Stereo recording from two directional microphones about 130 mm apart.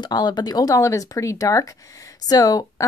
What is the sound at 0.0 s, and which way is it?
Speech, 35° left (ahead or behind).